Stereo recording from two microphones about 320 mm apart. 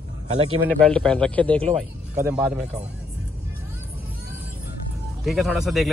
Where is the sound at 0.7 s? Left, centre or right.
Centre.